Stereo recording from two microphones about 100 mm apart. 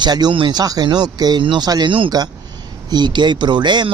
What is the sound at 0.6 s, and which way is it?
Speech, 40° right (ahead or behind).